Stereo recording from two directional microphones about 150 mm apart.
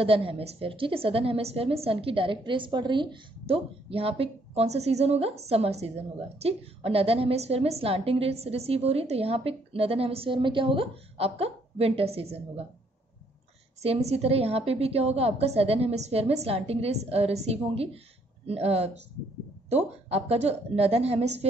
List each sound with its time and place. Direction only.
0.0 s a woman's voice: 40° right (ahead or behind)
13.8 s a woman's voice: 45° right (ahead or behind)